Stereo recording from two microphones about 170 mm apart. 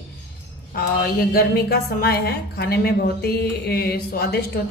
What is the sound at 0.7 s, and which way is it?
A woman's voice, 60° left (ahead or behind).